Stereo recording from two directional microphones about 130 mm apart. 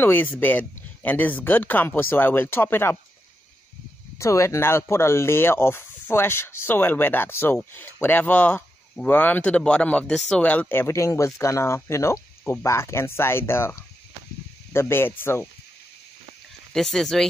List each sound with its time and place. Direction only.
0.0 s speech: 15° left (ahead or behind)
4.2 s speech: 25° left (ahead or behind)
16.7 s speech: 5° left (ahead or behind)